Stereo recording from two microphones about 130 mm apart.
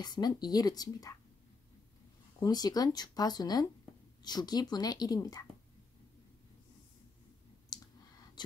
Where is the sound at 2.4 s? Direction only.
30° left (ahead or behind).